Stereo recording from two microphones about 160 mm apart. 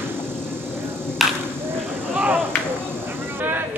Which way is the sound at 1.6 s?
15° right (ahead or behind).